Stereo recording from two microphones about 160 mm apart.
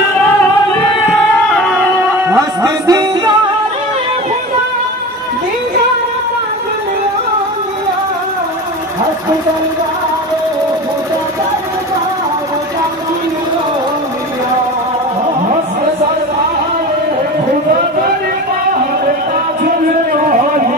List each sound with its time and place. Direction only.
1.5 s music: centre (ahead or behind)
2.2 s music: 20° right (ahead or behind)